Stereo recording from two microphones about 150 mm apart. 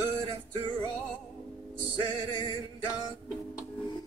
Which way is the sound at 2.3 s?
30° left (ahead or behind).